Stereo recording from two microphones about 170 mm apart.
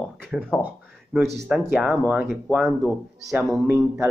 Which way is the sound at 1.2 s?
80° right.